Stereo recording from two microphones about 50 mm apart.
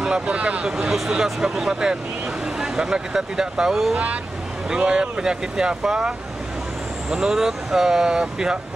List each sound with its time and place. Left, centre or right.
0.3 s speech: right
0.7 s speech: centre
3.9 s speech: right
4.6 s speech: centre